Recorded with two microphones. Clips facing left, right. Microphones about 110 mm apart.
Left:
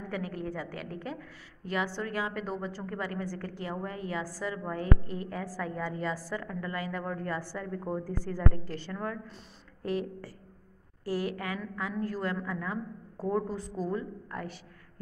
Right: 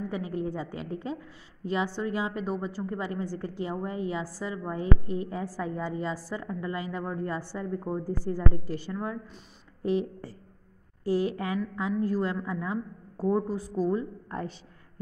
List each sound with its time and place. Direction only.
0.1 s a woman's voice: 20° right (ahead or behind)
14.3 s a woman's voice: 25° right (ahead or behind)